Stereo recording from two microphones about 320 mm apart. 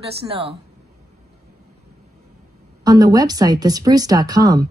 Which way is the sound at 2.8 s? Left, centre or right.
Centre.